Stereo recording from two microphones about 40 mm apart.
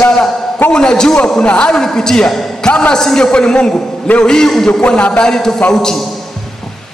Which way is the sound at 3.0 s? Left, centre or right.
Centre.